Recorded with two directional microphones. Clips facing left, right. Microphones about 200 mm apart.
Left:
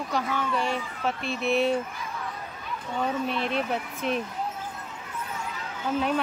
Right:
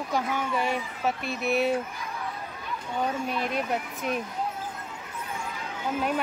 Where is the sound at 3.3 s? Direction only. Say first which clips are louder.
Left 1 dB; 45° right (ahead or behind).